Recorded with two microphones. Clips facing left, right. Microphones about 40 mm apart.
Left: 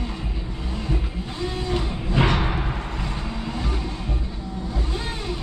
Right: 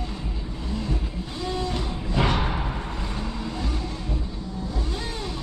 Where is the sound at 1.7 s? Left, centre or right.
Centre.